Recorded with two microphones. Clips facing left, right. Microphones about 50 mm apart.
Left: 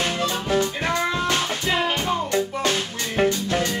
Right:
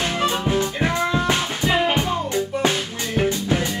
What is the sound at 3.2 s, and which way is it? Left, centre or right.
Music, centre.